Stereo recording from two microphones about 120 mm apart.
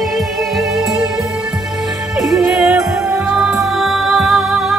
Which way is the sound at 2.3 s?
5° right (ahead or behind).